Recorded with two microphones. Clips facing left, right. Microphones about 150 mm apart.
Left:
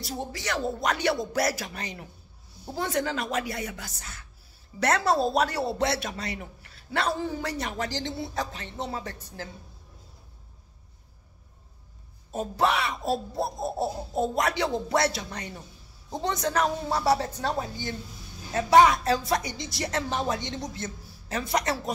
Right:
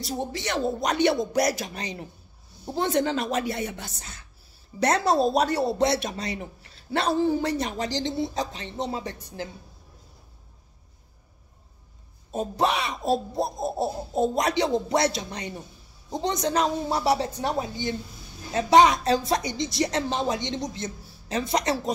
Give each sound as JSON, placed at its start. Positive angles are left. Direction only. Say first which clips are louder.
{"t": 0.0, "sound": "speech", "louder": "right 3 dB", "side_deg": -20}
{"t": 12.3, "sound": "a woman's voice", "louder": "right 1 dB", "side_deg": -20}